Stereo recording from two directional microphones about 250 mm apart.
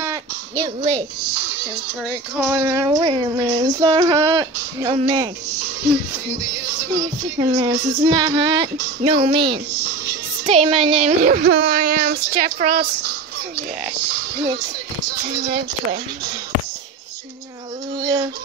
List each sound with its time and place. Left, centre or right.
2.3 s child singing: centre
6.9 s child singing: centre
9.0 s speech: right
15.2 s speech: right
17.9 s a sound: centre